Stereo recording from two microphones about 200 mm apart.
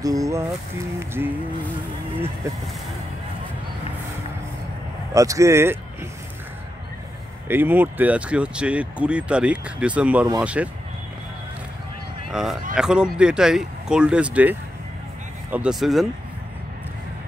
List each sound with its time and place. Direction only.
0.0 s speech: 15° right (ahead or behind)
5.1 s speech: 15° right (ahead or behind)
7.4 s speech: 10° right (ahead or behind)
12.3 s speech: centre (ahead or behind)